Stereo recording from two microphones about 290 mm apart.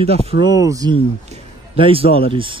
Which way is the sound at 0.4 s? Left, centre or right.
Centre.